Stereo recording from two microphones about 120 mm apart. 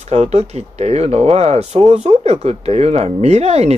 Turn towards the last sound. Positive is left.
turn(degrees=-60)  # may be behind; listen again after turning